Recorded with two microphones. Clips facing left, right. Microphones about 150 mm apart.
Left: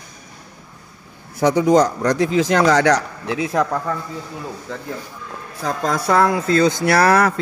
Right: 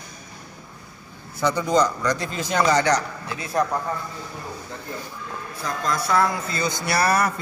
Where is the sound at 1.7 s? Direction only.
70° left (ahead or behind); by 7.3 s 90° left.